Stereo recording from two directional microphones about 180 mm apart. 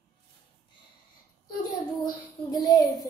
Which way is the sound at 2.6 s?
20° left (ahead or behind).